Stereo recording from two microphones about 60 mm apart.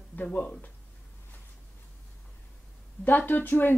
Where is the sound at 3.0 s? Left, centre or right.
Left.